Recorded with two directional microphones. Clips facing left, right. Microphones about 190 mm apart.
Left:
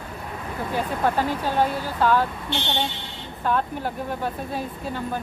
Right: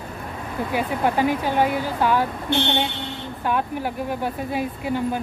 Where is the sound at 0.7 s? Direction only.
15° right (ahead or behind).